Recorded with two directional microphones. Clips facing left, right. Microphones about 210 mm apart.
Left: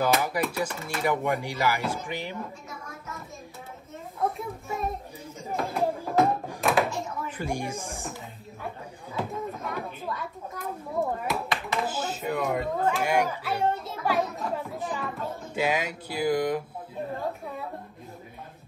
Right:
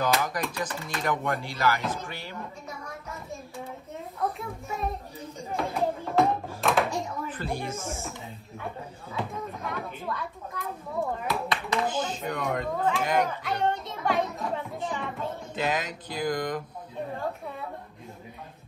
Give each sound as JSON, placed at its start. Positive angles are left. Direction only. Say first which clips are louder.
{"t": 0.0, "sound": "speech", "louder": "left 2 dB", "side_deg": 10}
{"t": 4.4, "sound": "a child's voice", "louder": "left 1 dB", "side_deg": 0}
{"t": 5.6, "sound": "a sound", "louder": "left 1 dB", "side_deg": 0}
{"t": 7.2, "sound": "speech", "louder": "left 1 dB", "side_deg": 15}
{"t": 9.1, "sound": "a child's voice", "louder": "left 2 dB", "side_deg": 0}